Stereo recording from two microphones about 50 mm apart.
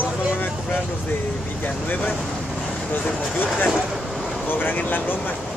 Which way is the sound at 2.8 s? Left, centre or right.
Left.